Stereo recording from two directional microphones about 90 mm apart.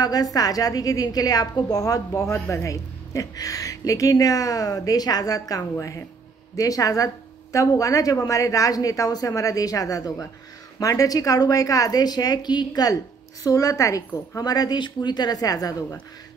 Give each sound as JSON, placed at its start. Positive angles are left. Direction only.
{"t": 0.0, "sound": "a woman's voice", "side_deg": 45}